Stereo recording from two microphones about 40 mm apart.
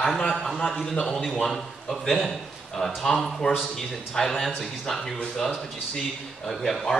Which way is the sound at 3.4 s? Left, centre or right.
Left.